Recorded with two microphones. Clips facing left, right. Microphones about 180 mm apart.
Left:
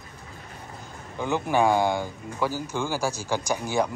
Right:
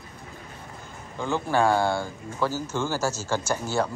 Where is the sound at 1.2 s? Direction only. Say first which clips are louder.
Left 1 dB; 15° left (ahead or behind).